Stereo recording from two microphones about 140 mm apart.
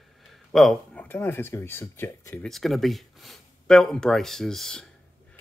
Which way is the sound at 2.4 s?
Centre (ahead or behind).